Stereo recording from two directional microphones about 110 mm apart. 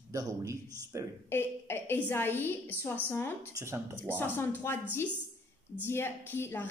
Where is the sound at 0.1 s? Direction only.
30° right (ahead or behind).